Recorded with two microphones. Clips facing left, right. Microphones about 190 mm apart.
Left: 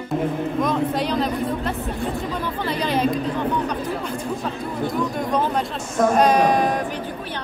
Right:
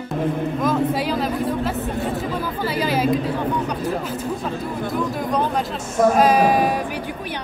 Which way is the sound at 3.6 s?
10° right (ahead or behind).